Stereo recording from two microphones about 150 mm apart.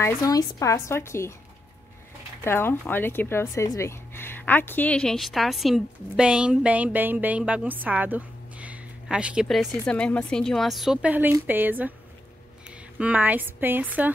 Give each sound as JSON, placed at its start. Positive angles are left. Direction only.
{"t": 0.0, "sound": "a woman's voice", "side_deg": 25}
{"t": 2.4, "sound": "a woman's voice", "side_deg": 15}